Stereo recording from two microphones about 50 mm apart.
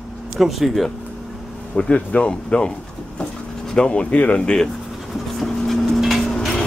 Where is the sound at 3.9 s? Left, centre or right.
Left.